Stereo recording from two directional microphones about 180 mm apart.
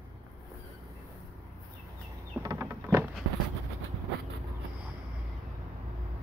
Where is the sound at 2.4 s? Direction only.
15° right (ahead or behind).